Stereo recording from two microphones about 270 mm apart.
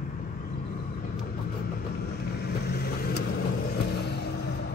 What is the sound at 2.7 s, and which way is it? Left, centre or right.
Vehicle, left.